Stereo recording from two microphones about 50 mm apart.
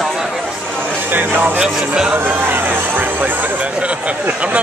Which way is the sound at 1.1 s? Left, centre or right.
Right.